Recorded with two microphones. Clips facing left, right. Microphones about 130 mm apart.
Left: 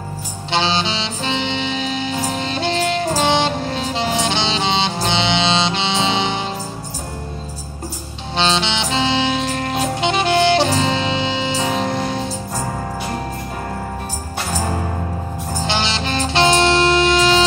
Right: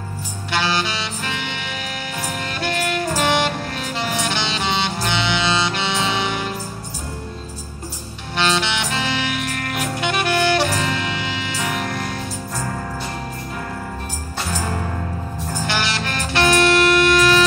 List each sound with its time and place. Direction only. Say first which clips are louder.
0.5 s saxophone: left 3 dB; 25° left (ahead or behind)
8.4 s saxophone: left 2 dB; 25° left (ahead or behind)
15.6 s saxophone: left 2 dB; 25° left (ahead or behind)